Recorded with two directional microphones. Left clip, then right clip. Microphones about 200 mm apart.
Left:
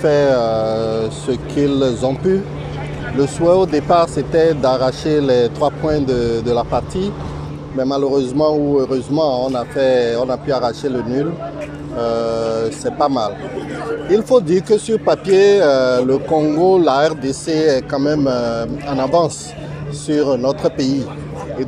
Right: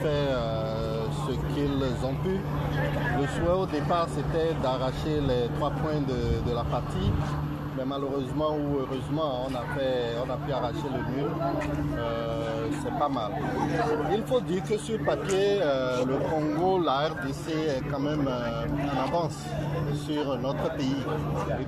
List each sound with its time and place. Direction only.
0.0 s speech: 65° left (ahead or behind)
3.2 s speech: 60° left (ahead or behind)
8.2 s speech: 55° left (ahead or behind)
12.0 s speech: 65° left (ahead or behind)